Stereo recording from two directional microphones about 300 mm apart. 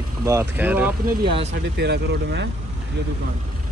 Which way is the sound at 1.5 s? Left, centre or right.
Right.